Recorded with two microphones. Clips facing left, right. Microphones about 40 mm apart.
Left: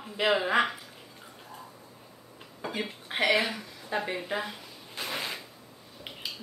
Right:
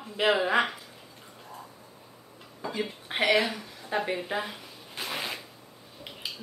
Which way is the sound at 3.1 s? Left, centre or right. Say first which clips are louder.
Right 1 dB; centre.